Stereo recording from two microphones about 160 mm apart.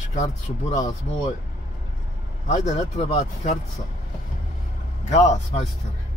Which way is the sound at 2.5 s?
40° left (ahead or behind).